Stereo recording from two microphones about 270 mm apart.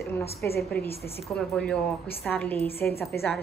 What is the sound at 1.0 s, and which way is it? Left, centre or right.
A woman's voice, centre.